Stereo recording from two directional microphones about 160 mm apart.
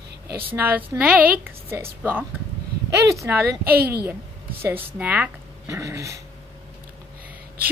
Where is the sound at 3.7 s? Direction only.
75° right (ahead or behind).